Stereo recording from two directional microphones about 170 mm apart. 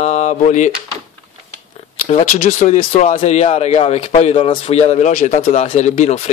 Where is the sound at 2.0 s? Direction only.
40° left (ahead or behind).